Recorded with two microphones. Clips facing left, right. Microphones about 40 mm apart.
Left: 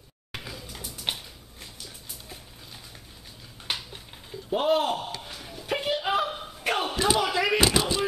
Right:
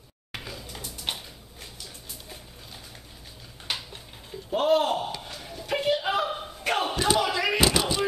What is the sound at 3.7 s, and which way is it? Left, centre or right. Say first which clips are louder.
Finger snapping: even; centre.